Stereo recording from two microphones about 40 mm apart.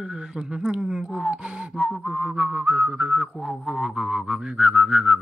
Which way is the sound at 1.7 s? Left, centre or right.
Centre.